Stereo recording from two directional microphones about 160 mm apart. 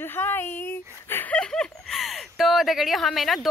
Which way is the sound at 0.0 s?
15° left (ahead or behind).